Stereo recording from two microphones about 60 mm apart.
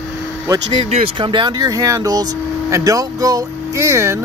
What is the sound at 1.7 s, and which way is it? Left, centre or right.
Speech, right.